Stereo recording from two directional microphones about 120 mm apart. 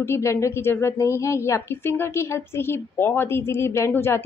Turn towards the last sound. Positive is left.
turn(degrees=20)  # may be behind; listen again after turning